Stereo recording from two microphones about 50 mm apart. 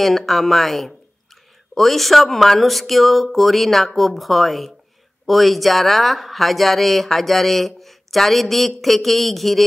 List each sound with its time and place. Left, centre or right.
0.0 s speech: centre